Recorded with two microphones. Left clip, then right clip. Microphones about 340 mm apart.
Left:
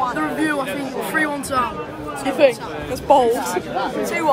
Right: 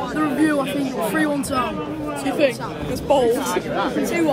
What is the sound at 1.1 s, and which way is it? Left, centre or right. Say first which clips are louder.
Speech: left 3 dB; centre.